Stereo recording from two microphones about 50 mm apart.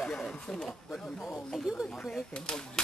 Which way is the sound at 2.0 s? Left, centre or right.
Centre.